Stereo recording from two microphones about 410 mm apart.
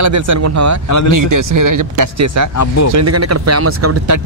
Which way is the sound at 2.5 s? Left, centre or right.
Left.